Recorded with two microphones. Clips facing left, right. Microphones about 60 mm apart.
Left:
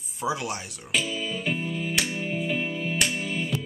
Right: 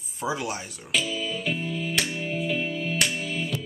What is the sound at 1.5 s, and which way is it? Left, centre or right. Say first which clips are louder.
Music: left 1 dB; centre.